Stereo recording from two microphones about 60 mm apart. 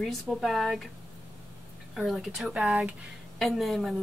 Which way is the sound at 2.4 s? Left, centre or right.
Right.